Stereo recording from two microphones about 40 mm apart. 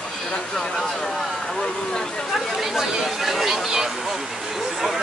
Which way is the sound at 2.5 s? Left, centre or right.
Centre.